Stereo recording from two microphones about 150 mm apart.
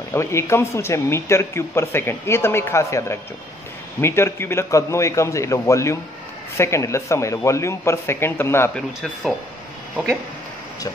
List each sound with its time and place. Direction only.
0.1 s speech: 20° left (ahead or behind)